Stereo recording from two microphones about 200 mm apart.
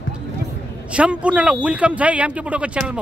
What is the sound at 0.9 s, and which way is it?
Speech, 5° right (ahead or behind).